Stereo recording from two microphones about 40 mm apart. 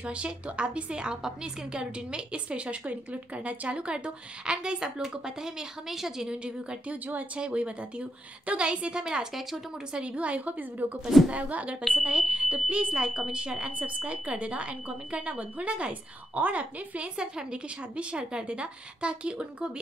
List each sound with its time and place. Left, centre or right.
0.0 s a woman's voice: right
6.4 s a woman's voice: right
9.9 s a woman's voice: right
13.7 s speech: right
17.2 s a woman's voice: centre